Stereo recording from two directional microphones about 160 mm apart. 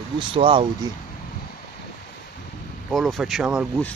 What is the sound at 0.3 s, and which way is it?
Speech, 35° right (ahead or behind).